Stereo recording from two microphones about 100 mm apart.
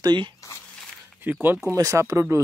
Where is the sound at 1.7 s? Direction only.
35° right (ahead or behind).